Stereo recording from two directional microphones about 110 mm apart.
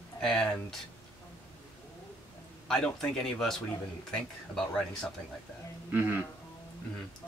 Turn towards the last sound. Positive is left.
turn(degrees=-15)  # may be behind; listen again after turning